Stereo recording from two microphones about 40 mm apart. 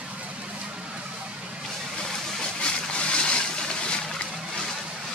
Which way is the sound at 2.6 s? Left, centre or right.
Left.